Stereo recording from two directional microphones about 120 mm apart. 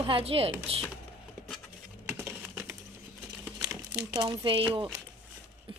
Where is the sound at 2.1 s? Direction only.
15° right (ahead or behind).